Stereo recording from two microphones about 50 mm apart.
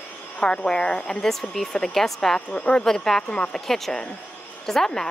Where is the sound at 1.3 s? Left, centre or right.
Centre.